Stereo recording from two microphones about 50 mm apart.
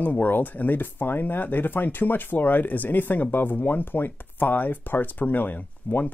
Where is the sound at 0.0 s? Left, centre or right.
Left.